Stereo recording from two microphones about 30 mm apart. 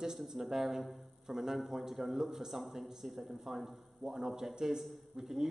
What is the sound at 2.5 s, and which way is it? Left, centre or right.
A man's voice, centre.